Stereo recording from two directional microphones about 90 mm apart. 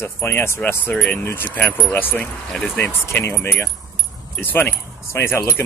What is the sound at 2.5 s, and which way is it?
Speech, 5° left (ahead or behind).